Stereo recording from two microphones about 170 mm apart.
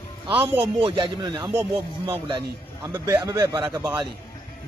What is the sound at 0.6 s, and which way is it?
A man's voice, 35° right (ahead or behind).